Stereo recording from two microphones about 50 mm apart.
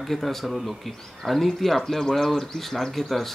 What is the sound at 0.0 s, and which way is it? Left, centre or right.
Speech, centre.